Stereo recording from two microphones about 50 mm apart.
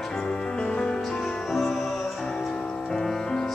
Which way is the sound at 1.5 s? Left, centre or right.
Centre.